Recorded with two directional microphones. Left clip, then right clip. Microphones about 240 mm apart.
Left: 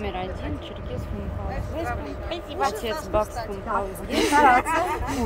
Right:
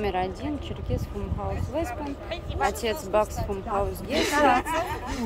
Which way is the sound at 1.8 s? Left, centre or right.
Centre.